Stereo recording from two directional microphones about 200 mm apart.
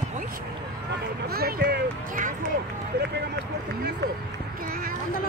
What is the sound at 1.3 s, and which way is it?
Speech, 50° right (ahead or behind).